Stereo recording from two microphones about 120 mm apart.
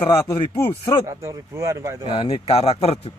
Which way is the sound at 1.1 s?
25° right (ahead or behind).